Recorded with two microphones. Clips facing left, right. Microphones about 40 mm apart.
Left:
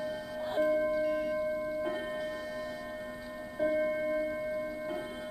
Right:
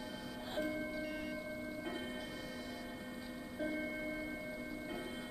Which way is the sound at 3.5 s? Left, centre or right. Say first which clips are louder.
Left 11 dB; centre.